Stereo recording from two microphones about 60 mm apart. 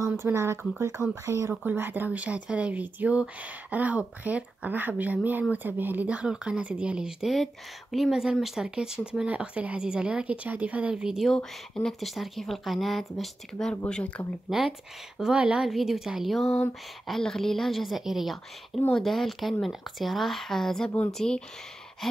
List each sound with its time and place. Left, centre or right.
0.2 s speech: right
1.7 s speech: right
11.3 s speech: centre
12.0 s speech: centre
13.6 s speech: centre
14.5 s speech: centre
15.7 s speech: centre